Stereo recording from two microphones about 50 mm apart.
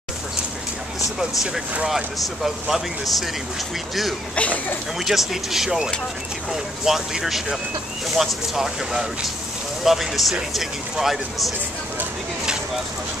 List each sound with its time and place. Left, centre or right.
1.9 s speech: centre
4.4 s speech: left
4.9 s speech: centre